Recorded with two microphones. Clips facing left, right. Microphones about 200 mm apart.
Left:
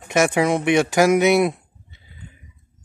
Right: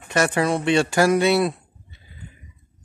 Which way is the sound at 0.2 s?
15° left (ahead or behind).